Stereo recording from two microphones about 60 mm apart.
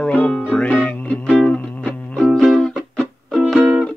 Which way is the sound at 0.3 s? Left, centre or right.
Centre.